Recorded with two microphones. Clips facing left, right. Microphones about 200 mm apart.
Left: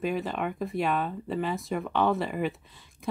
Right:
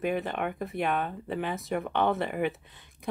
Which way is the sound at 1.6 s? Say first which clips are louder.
Left 1 dB; centre (ahead or behind).